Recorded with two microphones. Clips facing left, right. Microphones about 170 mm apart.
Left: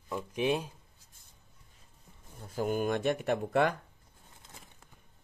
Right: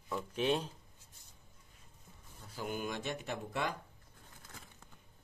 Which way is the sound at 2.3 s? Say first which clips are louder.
Left 9 dB; 50° left (ahead or behind).